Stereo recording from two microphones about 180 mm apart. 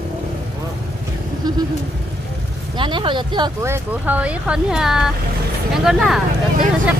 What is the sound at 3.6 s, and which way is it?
Speech, 10° right (ahead or behind).